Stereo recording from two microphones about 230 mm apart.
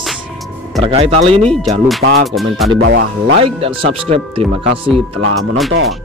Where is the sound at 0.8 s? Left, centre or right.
Right.